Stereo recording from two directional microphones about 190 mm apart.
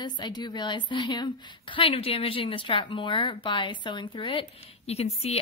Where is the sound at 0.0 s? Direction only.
20° left (ahead or behind).